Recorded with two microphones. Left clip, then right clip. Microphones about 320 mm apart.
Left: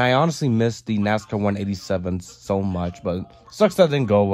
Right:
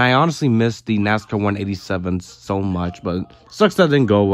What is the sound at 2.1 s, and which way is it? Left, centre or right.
Speech, right.